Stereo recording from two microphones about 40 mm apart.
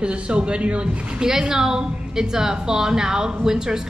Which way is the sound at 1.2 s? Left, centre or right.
Centre.